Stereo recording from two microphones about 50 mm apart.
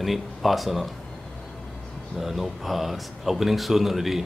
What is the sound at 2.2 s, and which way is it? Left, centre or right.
Speech, centre.